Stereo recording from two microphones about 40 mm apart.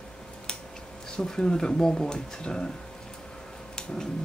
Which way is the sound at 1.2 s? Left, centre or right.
Centre.